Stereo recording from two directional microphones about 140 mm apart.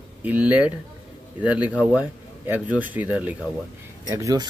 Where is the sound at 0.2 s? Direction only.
10° right (ahead or behind).